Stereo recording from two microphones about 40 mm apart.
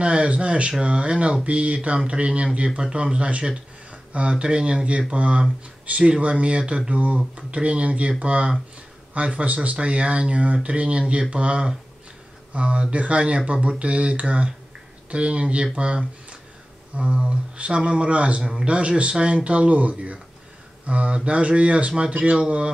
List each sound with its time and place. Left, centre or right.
0.0 s speech: right